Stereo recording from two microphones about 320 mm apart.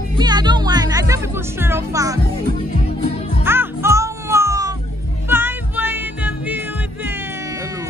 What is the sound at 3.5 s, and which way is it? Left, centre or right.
Music, centre.